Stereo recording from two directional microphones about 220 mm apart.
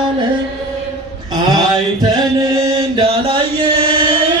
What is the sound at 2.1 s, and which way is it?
Chant, 20° right (ahead or behind).